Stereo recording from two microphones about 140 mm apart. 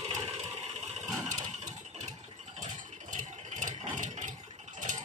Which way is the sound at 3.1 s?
65° right (ahead or behind).